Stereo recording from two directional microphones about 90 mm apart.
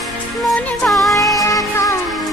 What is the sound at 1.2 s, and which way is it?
Music, 40° left (ahead or behind).